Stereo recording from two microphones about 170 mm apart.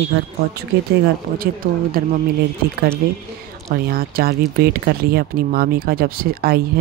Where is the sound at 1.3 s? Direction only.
55° right (ahead or behind).